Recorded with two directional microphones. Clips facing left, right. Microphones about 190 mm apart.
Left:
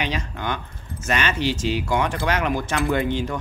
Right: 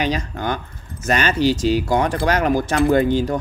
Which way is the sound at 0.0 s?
40° right (ahead or behind).